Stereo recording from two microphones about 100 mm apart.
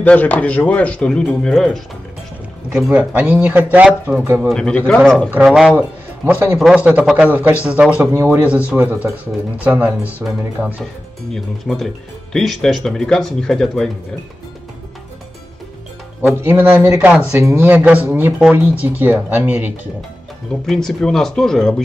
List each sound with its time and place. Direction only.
0.0 s speech: 15° left (ahead or behind)
2.7 s speech: 15° right (ahead or behind)
4.4 s speech: 5° left (ahead or behind)
5.3 s speech: 5° right (ahead or behind)
5.8 s a man's voice: 20° right (ahead or behind)
6.6 s speech: 10° right (ahead or behind)
8.1 s speech: 30° right (ahead or behind)
8.5 s speech: 15° right (ahead or behind)
10.2 s speech: centre (ahead or behind)
16.3 s speech: 20° right (ahead or behind)
20.6 s speech: 5° left (ahead or behind)